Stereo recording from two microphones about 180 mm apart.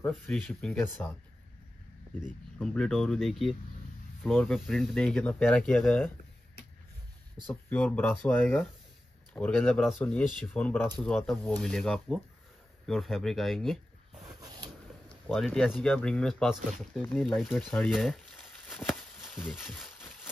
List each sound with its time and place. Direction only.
0.1 s speech: centre (ahead or behind)
2.6 s speech: 5° left (ahead or behind)
7.7 s speech: 10° left (ahead or behind)
14.4 s a sound: 25° right (ahead or behind)
15.2 s speech: centre (ahead or behind)